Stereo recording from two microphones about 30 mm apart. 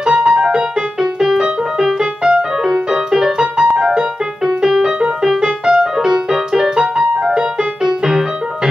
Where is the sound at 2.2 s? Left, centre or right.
Right.